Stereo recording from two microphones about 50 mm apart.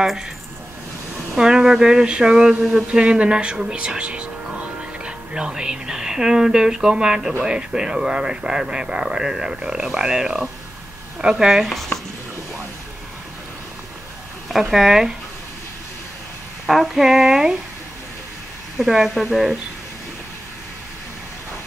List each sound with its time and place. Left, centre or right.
1.3 s a sound: centre
7.4 s speech: centre
14.5 s speech: centre
16.6 s speech: centre
18.8 s speech: centre